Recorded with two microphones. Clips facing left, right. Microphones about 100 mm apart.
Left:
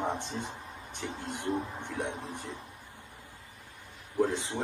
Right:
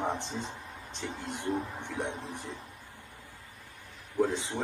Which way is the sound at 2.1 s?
15° left (ahead or behind).